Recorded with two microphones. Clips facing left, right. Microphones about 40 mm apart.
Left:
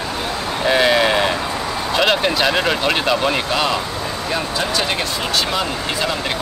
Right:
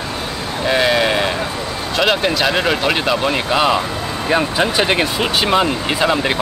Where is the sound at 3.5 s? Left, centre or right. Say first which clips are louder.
Right 4 dB; centre.